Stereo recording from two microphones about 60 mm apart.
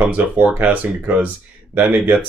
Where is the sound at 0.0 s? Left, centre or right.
Right.